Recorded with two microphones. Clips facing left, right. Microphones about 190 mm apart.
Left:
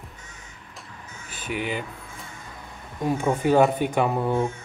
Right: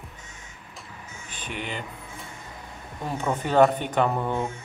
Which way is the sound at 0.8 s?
5° left (ahead or behind).